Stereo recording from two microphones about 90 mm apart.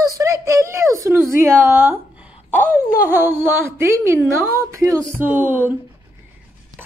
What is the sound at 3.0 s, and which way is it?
Speech, 25° right (ahead or behind).